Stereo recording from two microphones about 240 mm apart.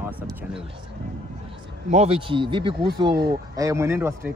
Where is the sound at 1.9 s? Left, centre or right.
Right.